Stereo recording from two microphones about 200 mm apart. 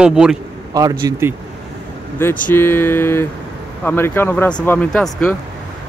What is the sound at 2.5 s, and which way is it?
Speech, 10° left (ahead or behind).